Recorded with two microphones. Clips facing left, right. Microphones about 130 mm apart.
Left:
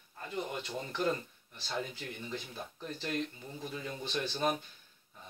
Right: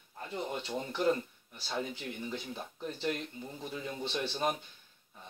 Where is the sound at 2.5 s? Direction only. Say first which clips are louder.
Right 2 dB; 15° right (ahead or behind).